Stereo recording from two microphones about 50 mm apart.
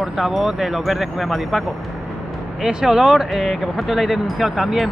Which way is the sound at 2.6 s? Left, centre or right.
Centre.